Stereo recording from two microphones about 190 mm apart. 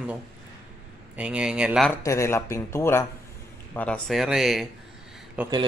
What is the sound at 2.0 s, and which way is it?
Speech, 15° left (ahead or behind).